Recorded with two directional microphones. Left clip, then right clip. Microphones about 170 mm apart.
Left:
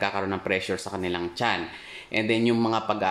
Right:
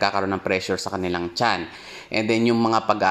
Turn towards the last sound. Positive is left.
turn(degrees=-25)  # may be behind; listen again after turning